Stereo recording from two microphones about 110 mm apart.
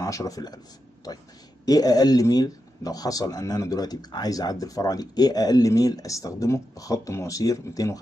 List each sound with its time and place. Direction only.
0.0 s speech: 30° left (ahead or behind)
1.7 s speech: 35° left (ahead or behind)